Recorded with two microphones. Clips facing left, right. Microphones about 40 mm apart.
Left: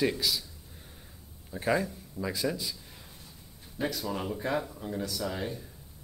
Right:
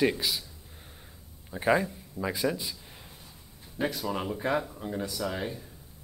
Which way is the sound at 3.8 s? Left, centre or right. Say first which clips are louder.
Right 2 dB; centre.